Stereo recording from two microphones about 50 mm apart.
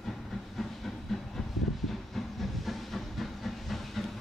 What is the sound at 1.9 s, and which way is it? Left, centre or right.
Hiss, centre.